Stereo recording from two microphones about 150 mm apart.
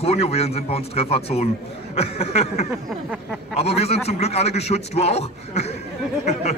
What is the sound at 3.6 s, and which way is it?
A man's voice, 45° left (ahead or behind).